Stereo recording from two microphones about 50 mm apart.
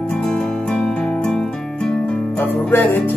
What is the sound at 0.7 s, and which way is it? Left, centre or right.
Music, centre.